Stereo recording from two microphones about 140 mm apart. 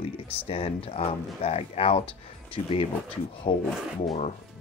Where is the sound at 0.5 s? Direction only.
45° left (ahead or behind).